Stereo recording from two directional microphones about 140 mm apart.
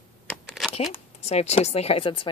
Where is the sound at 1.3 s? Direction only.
50° left (ahead or behind).